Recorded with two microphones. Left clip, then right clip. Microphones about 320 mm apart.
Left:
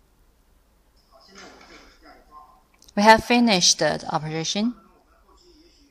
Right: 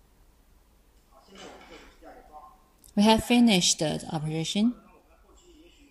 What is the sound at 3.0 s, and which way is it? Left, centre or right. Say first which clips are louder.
Speech: left 7 dB; centre.